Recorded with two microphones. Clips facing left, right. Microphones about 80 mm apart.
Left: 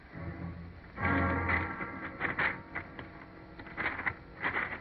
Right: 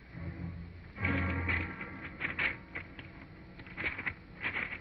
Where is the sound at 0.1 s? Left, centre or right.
Left.